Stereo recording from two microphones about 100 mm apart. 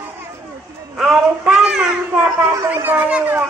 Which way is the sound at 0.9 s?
5° right (ahead or behind).